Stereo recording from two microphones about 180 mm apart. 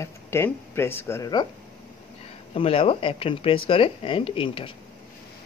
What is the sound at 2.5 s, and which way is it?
Speech, 30° left (ahead or behind).